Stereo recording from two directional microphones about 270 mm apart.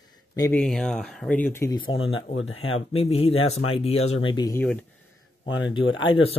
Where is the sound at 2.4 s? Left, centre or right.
Left.